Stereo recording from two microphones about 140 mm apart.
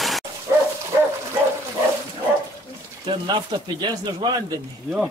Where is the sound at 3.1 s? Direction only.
35° right (ahead or behind).